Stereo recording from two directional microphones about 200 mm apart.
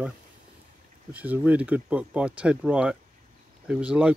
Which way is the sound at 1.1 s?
10° right (ahead or behind).